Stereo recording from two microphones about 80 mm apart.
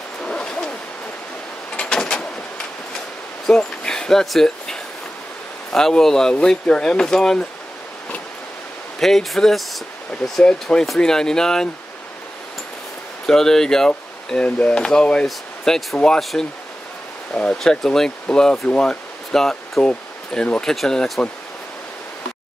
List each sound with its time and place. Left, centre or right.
0.2 s zipper: centre
1.8 s door: centre
3.4 s a sound: centre
5.7 s speech: centre
9.0 s speech: centre
13.3 s speech: centre
19.9 s speech: centre